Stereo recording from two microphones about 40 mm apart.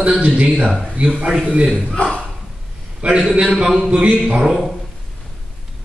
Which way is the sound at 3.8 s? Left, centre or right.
Right.